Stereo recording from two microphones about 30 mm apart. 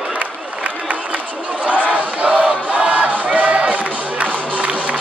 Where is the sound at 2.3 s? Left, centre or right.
Right.